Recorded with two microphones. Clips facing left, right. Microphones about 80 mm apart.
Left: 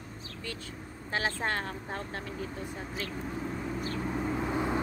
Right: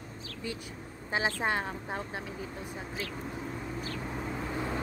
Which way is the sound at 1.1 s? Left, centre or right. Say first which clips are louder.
Right 1 dB; centre.